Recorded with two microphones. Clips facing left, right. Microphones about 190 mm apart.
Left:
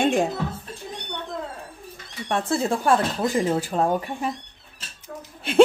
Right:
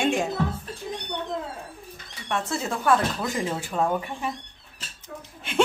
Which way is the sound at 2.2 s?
35° left (ahead or behind).